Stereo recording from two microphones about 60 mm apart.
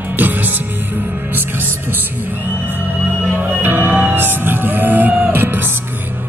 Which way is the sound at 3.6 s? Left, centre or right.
Right.